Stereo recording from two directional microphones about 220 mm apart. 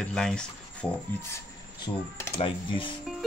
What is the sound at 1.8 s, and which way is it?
Speech, 20° left (ahead or behind).